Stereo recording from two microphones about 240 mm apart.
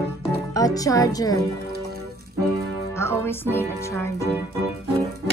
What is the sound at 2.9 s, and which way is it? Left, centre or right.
Speech, centre.